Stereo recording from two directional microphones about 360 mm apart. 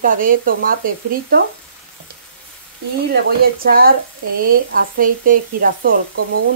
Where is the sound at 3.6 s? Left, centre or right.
Right.